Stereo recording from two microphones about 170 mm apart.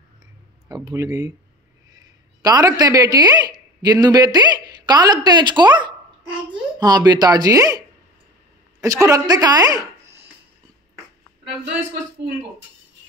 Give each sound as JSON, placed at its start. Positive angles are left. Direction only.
{"t": 0.7, "sound": "speech", "side_deg": -20}
{"t": 2.4, "sound": "speech", "side_deg": -20}
{"t": 8.8, "sound": "speech", "side_deg": -20}